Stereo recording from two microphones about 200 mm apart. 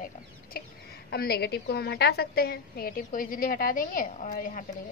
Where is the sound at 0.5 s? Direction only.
45° left (ahead or behind).